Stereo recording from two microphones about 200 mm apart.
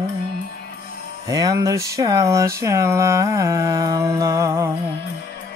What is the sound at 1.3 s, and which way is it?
Mantra, 15° right (ahead or behind).